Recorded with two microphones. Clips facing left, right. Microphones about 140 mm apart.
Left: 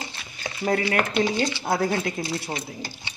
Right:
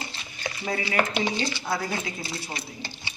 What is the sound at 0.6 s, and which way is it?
Speech, 55° left (ahead or behind).